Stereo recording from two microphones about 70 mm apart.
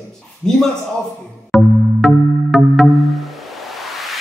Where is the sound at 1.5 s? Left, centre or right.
Centre.